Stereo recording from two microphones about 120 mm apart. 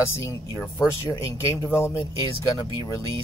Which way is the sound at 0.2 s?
25° left (ahead or behind).